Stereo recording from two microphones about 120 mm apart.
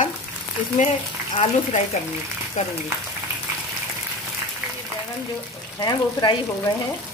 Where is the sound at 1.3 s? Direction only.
60° left (ahead or behind).